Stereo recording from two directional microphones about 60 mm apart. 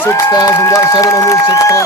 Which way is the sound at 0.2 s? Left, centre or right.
Left.